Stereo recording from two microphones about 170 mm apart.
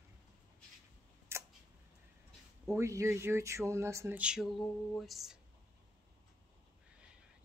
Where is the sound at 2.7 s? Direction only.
15° right (ahead or behind); by 5.4 s centre (ahead or behind).